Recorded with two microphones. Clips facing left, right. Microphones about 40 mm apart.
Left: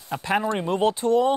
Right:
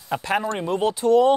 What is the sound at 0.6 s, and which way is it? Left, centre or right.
Speech, left.